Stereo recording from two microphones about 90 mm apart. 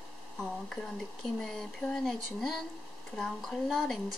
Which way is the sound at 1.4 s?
5° left (ahead or behind).